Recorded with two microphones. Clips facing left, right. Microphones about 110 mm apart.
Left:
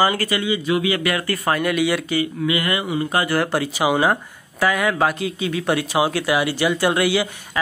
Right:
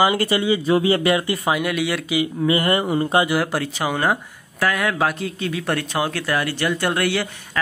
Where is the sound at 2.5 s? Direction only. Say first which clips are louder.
Right 6 dB; 35° right (ahead or behind).